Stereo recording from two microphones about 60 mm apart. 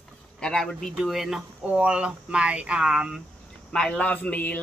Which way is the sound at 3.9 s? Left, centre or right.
Left.